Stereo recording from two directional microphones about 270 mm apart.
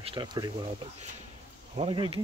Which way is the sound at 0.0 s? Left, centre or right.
Centre.